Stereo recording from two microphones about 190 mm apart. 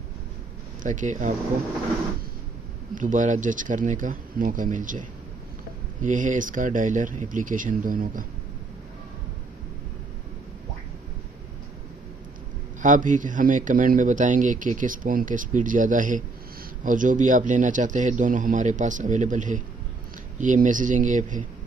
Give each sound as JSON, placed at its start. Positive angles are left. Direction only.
{"t": 0.8, "sound": "a man's voice", "side_deg": -40}
{"t": 2.9, "sound": "speech", "side_deg": -45}
{"t": 12.8, "sound": "a man's voice", "side_deg": -40}